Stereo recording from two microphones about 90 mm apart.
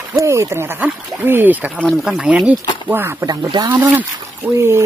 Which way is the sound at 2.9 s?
25° right (ahead or behind).